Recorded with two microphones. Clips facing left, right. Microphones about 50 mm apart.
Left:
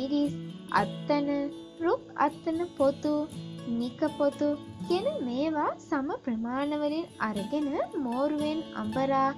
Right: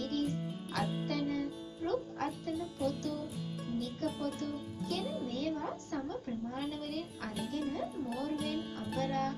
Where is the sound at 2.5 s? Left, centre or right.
Centre.